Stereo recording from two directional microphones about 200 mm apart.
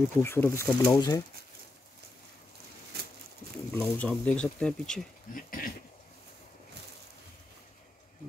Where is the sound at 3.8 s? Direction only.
5° left (ahead or behind).